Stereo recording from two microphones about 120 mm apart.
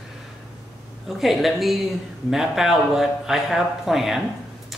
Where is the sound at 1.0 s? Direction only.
Centre (ahead or behind).